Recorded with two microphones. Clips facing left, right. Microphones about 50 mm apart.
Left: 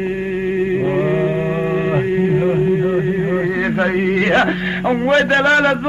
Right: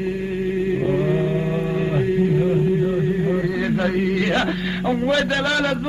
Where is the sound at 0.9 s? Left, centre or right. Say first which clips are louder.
Left 3 dB; left.